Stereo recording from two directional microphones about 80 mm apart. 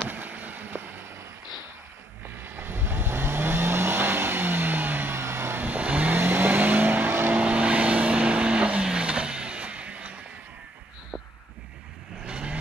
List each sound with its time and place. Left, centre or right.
0.1 s boat: right
2.2 s vehicle: right
12.3 s vehicle: centre